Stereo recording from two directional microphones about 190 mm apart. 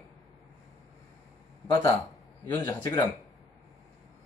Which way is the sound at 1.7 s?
10° left (ahead or behind).